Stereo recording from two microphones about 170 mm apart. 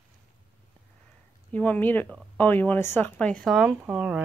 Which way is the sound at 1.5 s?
10° left (ahead or behind).